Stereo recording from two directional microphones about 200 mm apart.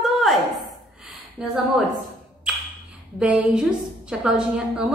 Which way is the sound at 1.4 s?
Centre (ahead or behind).